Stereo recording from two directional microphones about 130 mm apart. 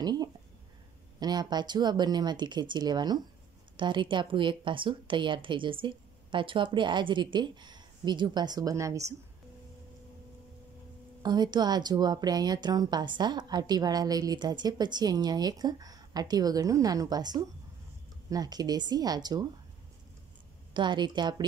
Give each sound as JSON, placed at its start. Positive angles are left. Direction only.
{"t": 0.0, "sound": "a woman's voice", "side_deg": -30}
{"t": 11.2, "sound": "a woman's voice", "side_deg": -35}
{"t": 20.7, "sound": "a woman's voice", "side_deg": -35}